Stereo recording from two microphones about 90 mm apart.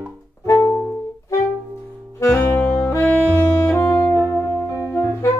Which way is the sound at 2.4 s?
25° left (ahead or behind).